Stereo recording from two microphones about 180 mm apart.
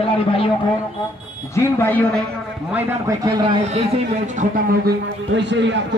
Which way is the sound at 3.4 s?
30° right (ahead or behind).